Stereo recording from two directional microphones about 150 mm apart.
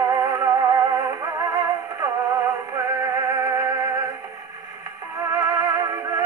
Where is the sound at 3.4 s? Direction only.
25° right (ahead or behind).